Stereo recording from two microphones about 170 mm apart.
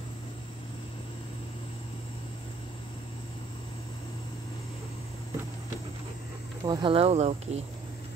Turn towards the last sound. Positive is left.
turn(degrees=-40)  # may be behind; listen again after turning